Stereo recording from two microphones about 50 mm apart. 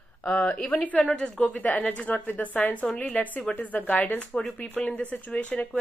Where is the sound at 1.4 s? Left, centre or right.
Left.